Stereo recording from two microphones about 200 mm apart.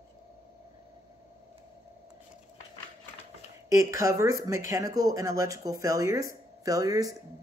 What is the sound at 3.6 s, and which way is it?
Speech, 15° right (ahead or behind).